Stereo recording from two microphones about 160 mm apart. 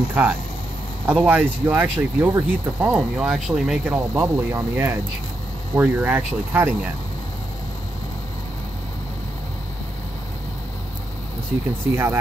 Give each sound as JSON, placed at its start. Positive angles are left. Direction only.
{"t": 0.1, "sound": "speech", "side_deg": -10}
{"t": 11.9, "sound": "speech", "side_deg": -15}